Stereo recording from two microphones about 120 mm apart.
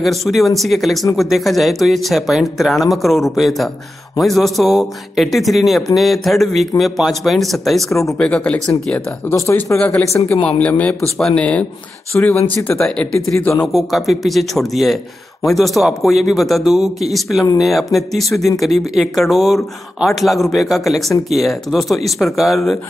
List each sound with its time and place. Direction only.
0.0 s speech: centre (ahead or behind)
7.9 s speech: 25° left (ahead or behind)
8.2 s speech: 10° left (ahead or behind)
9.3 s speech: 25° left (ahead or behind)
10.6 s speech: 10° left (ahead or behind)
12.1 s speech: 20° left (ahead or behind)
12.6 s speech: 5° left (ahead or behind)
13.7 s speech: centre (ahead or behind)